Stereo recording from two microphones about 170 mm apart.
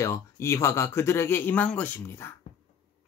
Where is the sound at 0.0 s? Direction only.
15° left (ahead or behind).